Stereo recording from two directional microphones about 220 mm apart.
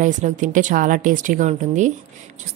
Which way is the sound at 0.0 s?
35° right (ahead or behind).